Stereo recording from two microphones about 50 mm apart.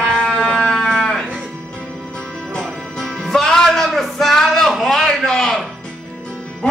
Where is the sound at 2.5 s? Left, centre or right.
Centre.